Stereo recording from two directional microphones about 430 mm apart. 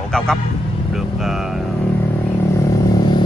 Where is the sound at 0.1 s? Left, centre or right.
Centre.